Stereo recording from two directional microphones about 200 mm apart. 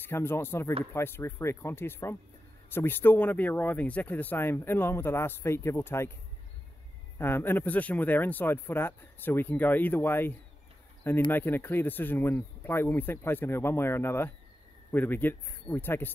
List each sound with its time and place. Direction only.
0.0 s speech: 10° left (ahead or behind)
7.2 s speech: 10° left (ahead or behind)
11.3 s speech: 10° left (ahead or behind)